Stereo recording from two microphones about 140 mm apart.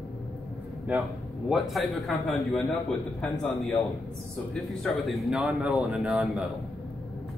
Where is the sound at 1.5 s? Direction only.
Centre (ahead or behind).